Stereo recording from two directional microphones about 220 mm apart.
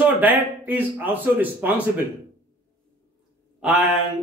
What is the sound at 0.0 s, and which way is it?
A man's voice, 10° right (ahead or behind).